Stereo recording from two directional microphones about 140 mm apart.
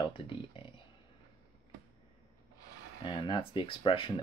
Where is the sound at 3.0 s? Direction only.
35° left (ahead or behind).